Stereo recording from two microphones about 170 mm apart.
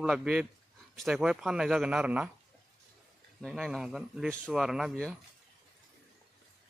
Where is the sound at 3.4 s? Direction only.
Centre (ahead or behind).